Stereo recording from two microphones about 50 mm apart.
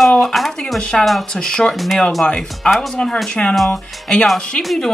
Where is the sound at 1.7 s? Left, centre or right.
Centre.